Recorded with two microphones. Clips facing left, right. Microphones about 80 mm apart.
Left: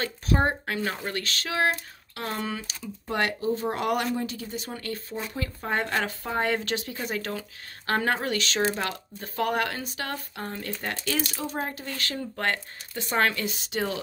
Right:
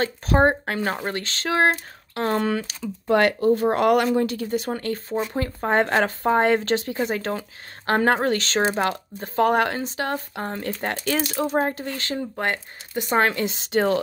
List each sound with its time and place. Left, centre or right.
0.0 s speech: right
2.3 s speech: right
4.8 s speech: right
11.9 s speech: right
13.7 s speech: right